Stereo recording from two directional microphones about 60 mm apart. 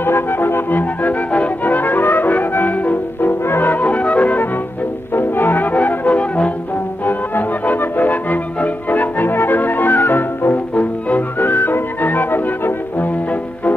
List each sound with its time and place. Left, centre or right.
0.0 s music: left
5.1 s brass instrument: left
7.1 s music: left
10.7 s whistling: left